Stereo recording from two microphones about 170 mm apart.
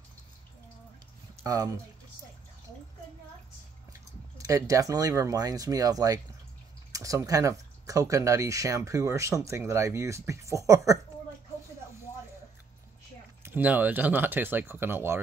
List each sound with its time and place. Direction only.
1.4 s speech: 20° right (ahead or behind)
4.4 s speech: 20° right (ahead or behind)
13.4 s speech: 10° right (ahead or behind)